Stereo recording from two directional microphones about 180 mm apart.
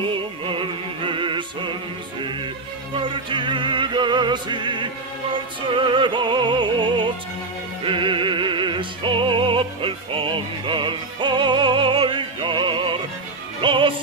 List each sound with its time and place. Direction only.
0.1 s music: 30° right (ahead or behind)
3.0 s music: 25° right (ahead or behind)